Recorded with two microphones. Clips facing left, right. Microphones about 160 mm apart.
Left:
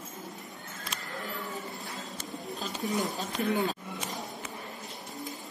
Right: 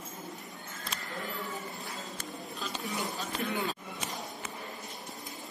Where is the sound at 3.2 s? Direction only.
45° left (ahead or behind).